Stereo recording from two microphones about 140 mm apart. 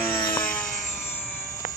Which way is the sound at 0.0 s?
30° left (ahead or behind).